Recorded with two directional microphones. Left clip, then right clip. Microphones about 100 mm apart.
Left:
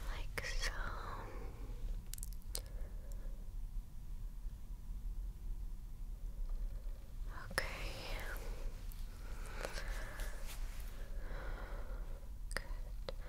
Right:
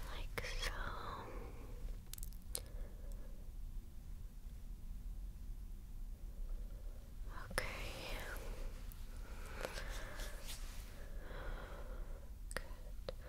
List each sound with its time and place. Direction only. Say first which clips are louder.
0.1 s whispering: left 2 dB; 25° right (ahead or behind)
7.2 s whispering: left 2 dB; 20° right (ahead or behind)
9.3 s a sound: left 1 dB; 15° right (ahead or behind)
12.6 s whispering: left 2 dB; 15° right (ahead or behind)
13.1 s whispering: left 1 dB; centre (ahead or behind)